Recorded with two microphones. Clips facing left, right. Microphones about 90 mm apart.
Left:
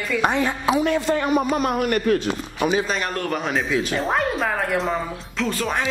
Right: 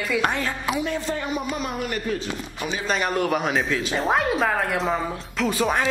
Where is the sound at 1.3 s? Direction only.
50° left (ahead or behind).